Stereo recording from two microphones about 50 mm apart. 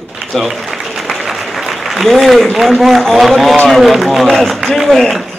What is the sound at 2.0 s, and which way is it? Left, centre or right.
Speech, centre.